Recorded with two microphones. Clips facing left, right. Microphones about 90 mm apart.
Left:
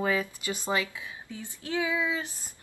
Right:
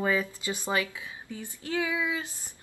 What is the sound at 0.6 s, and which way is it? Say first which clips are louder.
Speech: even; 20° left (ahead or behind).